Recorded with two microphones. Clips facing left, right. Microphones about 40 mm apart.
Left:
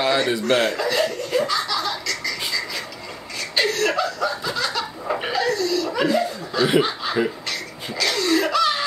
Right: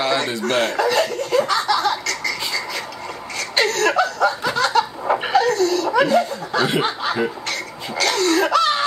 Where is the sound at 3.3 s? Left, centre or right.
Right.